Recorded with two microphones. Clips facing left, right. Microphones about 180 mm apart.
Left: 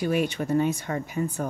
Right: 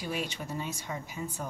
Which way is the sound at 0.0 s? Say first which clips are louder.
Left 10 dB; 55° left (ahead or behind).